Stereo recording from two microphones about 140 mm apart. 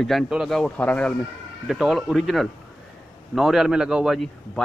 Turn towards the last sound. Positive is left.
turn(degrees=0)  # may be behind; listen again after turning